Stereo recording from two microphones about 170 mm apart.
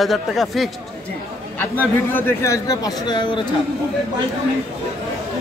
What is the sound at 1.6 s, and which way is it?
Speech, 10° left (ahead or behind).